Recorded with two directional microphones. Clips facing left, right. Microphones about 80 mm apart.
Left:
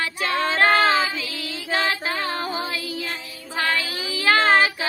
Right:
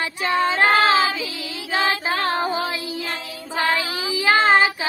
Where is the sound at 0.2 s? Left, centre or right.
Right.